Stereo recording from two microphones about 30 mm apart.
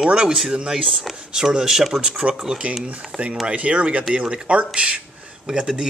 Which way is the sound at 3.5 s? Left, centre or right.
Right.